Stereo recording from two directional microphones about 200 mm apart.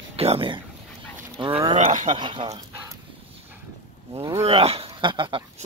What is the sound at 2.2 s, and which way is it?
Speech, 25° right (ahead or behind).